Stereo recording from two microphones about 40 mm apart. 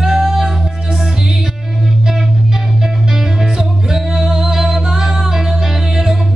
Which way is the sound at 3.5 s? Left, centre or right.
Centre.